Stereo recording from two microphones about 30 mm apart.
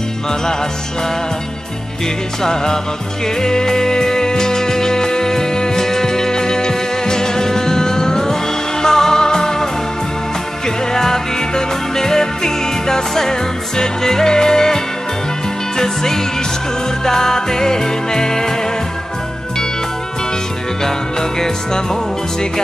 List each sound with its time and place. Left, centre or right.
2.4 s music: left
10.9 s music: centre
15.8 s music: centre
20.8 s music: centre